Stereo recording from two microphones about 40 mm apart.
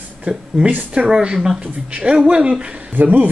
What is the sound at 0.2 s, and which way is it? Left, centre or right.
Speech, centre.